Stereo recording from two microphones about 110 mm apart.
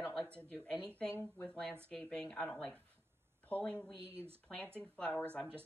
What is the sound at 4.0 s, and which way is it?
Speech, 65° right (ahead or behind).